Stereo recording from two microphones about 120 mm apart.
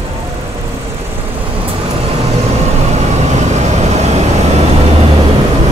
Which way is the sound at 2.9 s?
70° right (ahead or behind).